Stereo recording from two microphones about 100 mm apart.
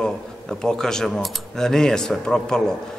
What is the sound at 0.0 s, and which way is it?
A man's voice, 5° left (ahead or behind).